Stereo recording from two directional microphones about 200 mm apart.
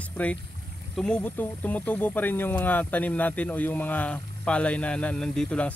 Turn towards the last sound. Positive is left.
turn(degrees=5)  # may be behind; listen again after turning